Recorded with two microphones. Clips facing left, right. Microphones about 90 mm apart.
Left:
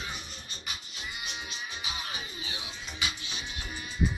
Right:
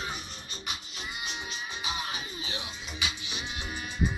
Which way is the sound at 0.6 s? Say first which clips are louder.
Right 2 dB; 25° right (ahead or behind).